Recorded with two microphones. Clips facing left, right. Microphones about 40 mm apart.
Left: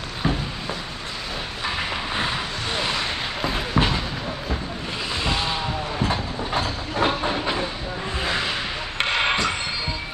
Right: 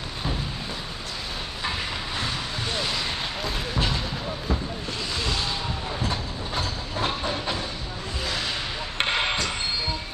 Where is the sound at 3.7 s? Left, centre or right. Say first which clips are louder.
Left 6 dB; left.